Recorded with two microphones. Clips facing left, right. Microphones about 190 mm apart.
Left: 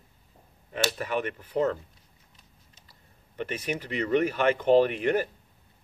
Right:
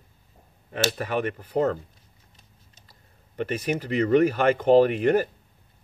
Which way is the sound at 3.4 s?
40° right (ahead or behind).